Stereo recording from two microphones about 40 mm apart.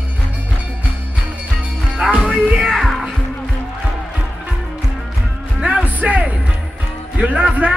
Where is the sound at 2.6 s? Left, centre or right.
Centre.